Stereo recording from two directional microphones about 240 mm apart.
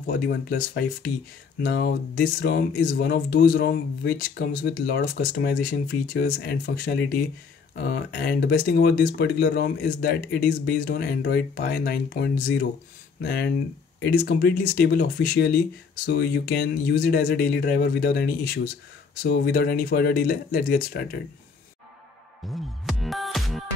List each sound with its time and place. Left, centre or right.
0.0 s speech: left
22.4 s music: centre